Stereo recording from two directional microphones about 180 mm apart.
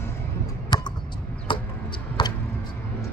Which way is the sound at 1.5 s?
30° left (ahead or behind).